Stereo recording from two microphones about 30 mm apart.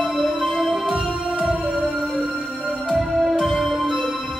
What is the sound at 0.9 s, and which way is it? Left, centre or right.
Music, centre.